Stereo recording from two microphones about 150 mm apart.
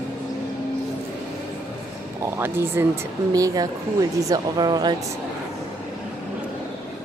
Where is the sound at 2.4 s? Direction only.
15° right (ahead or behind).